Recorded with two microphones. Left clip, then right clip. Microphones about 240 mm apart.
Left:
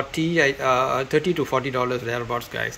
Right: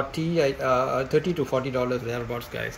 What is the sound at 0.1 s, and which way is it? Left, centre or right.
Speech, centre.